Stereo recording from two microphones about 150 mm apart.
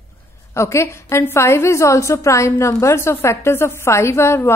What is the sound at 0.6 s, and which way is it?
A woman's voice, 20° left (ahead or behind).